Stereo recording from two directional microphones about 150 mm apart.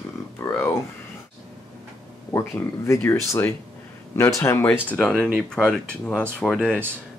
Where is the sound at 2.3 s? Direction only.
15° left (ahead or behind).